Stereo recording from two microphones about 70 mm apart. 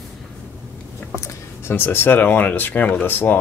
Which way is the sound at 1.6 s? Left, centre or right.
Left.